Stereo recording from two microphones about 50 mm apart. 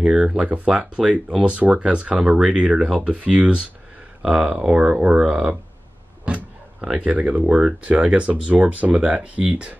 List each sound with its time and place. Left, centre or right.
0.0 s speech: centre
0.4 s speech: right
4.2 s speech: centre
7.1 s speech: right